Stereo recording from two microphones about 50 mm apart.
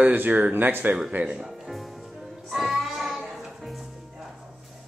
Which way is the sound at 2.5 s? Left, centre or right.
Centre.